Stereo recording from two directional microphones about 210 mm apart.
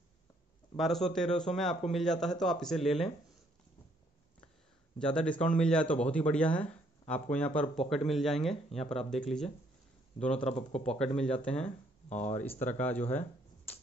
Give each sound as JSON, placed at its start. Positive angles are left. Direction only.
{"t": 0.7, "sound": "speech", "side_deg": 0}
{"t": 4.9, "sound": "speech", "side_deg": 5}
{"t": 10.5, "sound": "speech", "side_deg": 30}
{"t": 11.0, "sound": "speech", "side_deg": 5}
{"t": 12.1, "sound": "speech", "side_deg": 30}
{"t": 12.5, "sound": "speech", "side_deg": 10}